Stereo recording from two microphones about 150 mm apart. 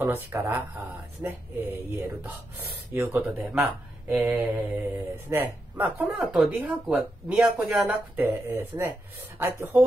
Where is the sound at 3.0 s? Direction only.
5° right (ahead or behind).